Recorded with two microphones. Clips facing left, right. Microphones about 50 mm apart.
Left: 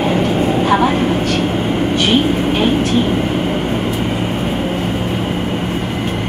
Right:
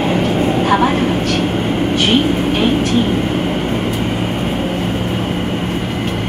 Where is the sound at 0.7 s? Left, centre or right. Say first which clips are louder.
Even; right.